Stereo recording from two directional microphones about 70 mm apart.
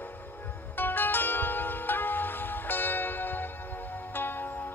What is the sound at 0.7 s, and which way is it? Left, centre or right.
Zither, left.